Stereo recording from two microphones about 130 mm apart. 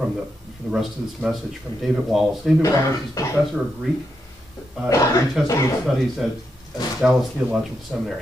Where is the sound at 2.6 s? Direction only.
25° left (ahead or behind).